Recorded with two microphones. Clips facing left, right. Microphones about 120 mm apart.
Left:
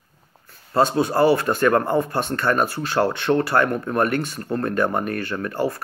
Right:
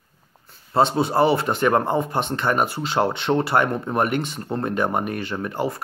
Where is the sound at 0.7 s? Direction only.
25° right (ahead or behind).